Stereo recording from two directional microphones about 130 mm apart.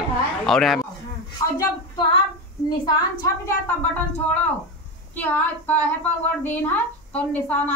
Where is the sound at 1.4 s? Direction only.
25° left (ahead or behind).